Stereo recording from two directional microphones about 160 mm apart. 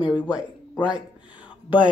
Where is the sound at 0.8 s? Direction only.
30° left (ahead or behind).